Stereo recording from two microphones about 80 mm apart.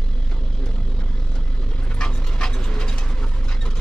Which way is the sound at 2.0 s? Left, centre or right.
Centre.